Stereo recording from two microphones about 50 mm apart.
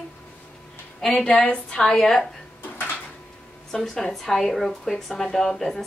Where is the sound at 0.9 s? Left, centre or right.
Centre.